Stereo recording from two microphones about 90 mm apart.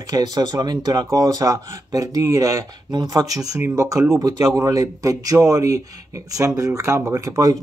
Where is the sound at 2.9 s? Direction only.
50° right (ahead or behind).